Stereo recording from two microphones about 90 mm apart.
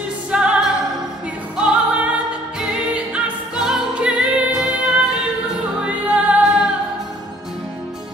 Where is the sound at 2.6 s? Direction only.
10° right (ahead or behind).